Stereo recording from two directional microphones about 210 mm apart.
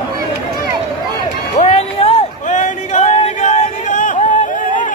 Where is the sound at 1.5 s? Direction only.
30° left (ahead or behind).